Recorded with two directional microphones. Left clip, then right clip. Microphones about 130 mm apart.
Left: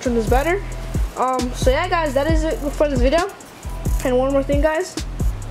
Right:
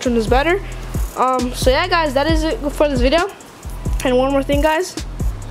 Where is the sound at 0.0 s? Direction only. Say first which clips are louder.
Right 3 dB; 30° right (ahead or behind).